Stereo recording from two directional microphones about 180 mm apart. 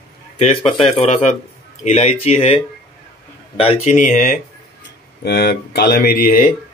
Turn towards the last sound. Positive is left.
turn(degrees=55)  # may be behind; listen again after turning